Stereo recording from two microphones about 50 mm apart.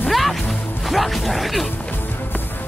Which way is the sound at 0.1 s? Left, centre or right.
Centre.